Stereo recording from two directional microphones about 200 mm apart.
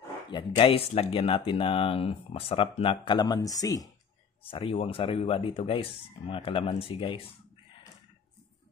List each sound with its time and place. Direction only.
0.3 s speech: 25° left (ahead or behind)